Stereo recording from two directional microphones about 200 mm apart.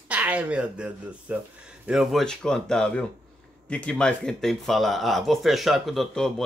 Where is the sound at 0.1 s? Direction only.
5° right (ahead or behind).